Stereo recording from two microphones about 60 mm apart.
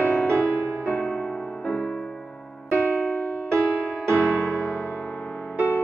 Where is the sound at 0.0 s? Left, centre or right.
Left.